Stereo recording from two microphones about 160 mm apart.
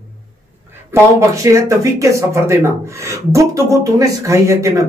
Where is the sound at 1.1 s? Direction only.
20° right (ahead or behind).